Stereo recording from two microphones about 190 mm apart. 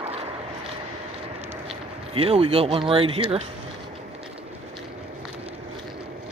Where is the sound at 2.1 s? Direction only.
30° right (ahead or behind).